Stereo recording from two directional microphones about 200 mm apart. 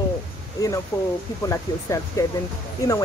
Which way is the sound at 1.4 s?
15° left (ahead or behind).